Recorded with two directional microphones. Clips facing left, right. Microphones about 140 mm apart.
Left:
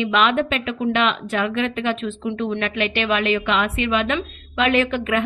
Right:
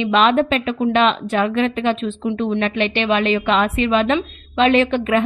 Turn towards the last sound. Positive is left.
turn(degrees=-30)  # may be behind; listen again after turning